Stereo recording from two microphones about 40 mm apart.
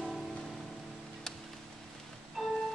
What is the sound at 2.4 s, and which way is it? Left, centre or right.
Music, centre.